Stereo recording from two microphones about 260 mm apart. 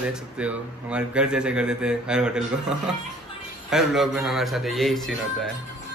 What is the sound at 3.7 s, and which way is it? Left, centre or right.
Speech, centre.